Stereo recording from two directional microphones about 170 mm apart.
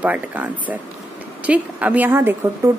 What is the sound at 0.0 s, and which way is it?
A woman's voice, 10° right (ahead or behind).